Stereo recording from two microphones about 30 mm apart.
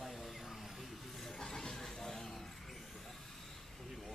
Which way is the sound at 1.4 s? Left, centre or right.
Centre.